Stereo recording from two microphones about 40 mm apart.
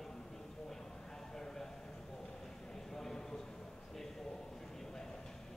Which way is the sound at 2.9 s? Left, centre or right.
Centre.